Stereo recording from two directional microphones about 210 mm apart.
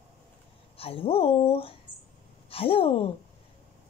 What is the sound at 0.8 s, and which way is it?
A woman's voice, 25° left (ahead or behind).